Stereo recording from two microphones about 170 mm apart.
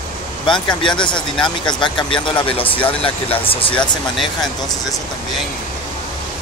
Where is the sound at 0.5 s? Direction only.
30° left (ahead or behind).